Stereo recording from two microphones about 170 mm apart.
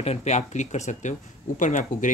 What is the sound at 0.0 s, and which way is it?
Speech, 40° left (ahead or behind).